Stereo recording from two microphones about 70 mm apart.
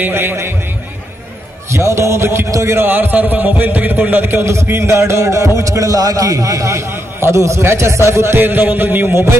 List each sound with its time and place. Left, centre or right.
0.0 s a man's voice: right
1.7 s a man's voice: right
2.9 s a man's voice: right
8.4 s a man's voice: right